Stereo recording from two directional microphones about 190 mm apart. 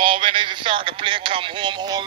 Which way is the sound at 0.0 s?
25° right (ahead or behind).